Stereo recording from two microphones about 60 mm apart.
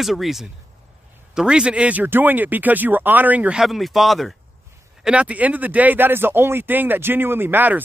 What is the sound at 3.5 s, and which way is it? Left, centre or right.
Speech, centre.